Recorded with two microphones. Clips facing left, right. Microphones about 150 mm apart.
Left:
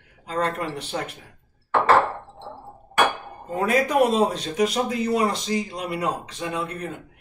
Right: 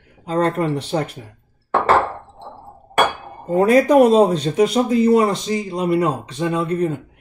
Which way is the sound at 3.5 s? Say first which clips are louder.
Right 9 dB; 35° right (ahead or behind).